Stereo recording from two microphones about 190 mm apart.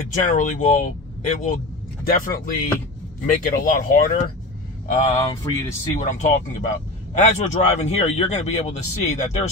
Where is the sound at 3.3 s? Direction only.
45° left (ahead or behind).